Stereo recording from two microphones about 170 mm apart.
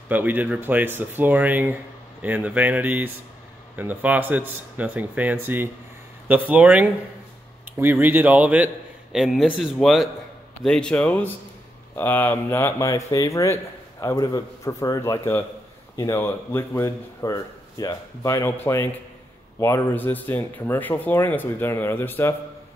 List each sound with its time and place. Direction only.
0.1 s speech: 10° right (ahead or behind); by 22.3 s 10° left (ahead or behind)